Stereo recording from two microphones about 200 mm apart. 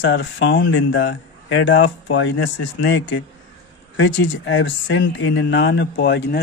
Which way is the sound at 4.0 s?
70° left (ahead or behind).